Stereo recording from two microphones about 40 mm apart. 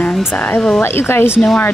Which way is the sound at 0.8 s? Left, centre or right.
Left.